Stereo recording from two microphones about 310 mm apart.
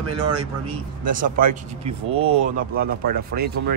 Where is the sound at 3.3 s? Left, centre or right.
Right.